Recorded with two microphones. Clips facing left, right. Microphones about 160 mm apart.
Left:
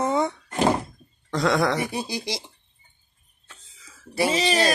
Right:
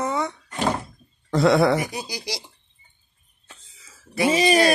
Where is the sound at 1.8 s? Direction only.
25° left (ahead or behind).